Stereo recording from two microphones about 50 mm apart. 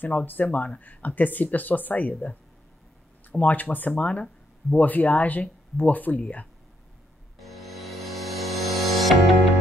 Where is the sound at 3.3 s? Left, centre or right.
Left.